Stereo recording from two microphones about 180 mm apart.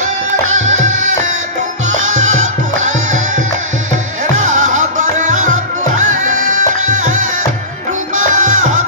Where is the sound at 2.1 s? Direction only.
90° right.